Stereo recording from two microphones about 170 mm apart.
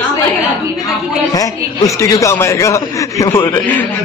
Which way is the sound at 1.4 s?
20° left (ahead or behind).